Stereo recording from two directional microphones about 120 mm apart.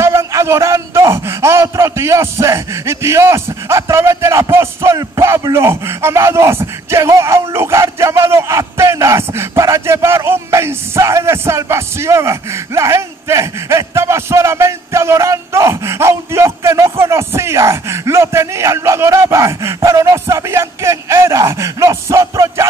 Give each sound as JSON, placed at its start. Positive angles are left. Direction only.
{"t": 0.0, "sound": "speech", "side_deg": -25}